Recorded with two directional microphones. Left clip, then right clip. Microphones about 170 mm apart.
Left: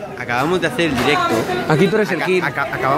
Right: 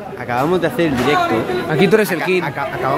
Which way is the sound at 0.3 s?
20° right (ahead or behind).